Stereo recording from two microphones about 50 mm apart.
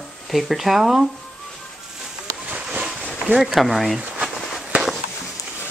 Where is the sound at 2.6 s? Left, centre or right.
Centre.